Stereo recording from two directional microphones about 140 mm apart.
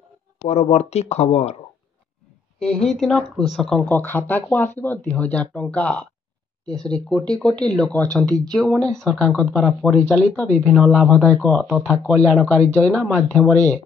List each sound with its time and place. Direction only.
0.5 s speech: 50° left (ahead or behind)
2.6 s speech: 5° left (ahead or behind)
6.6 s speech: 25° right (ahead or behind)
6.9 s speech: 5° left (ahead or behind)
10.6 s speech: 5° right (ahead or behind)
11.1 s speech: 5° left (ahead or behind)